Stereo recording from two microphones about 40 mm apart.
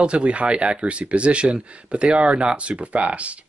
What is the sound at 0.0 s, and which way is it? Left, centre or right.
Speech, right.